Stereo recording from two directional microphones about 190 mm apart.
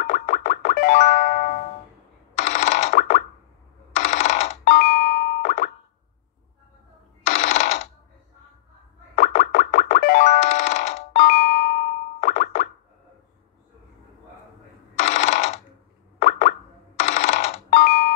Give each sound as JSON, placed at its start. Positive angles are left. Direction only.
{"t": 0.0, "sound": "music", "side_deg": 45}
{"t": 2.3, "sound": "a sound", "side_deg": 35}
{"t": 3.9, "sound": "plop", "side_deg": 35}
{"t": 7.2, "sound": "ratchet", "side_deg": 40}
{"t": 9.2, "sound": "music", "side_deg": 45}
{"t": 12.3, "sound": "plop", "side_deg": 50}
{"t": 15.0, "sound": "mechanisms", "side_deg": 35}
{"t": 16.2, "sound": "plop", "side_deg": 50}
{"t": 17.8, "sound": "alarm clock", "side_deg": 55}